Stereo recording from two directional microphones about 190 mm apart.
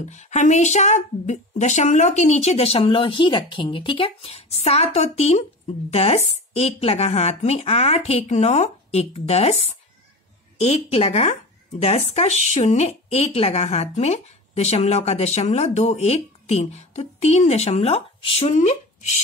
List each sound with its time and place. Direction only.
0.0 s speech: 35° left (ahead or behind)